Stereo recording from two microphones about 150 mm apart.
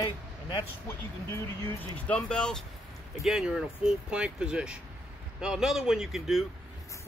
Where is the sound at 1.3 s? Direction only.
10° left (ahead or behind).